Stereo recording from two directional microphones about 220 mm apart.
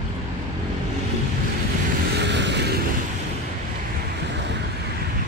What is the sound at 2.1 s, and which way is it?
Vehicle, 55° right (ahead or behind).